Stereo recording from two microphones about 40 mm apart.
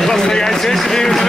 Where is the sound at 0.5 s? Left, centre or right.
Centre.